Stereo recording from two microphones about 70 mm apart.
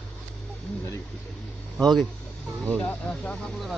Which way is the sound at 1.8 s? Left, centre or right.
Centre.